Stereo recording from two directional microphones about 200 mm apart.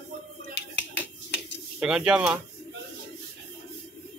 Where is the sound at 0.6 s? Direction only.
60° left (ahead or behind).